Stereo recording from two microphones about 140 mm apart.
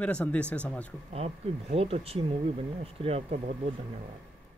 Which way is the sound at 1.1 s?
45° right (ahead or behind).